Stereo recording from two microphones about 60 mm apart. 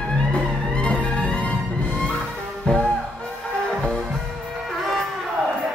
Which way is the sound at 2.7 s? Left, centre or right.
Left.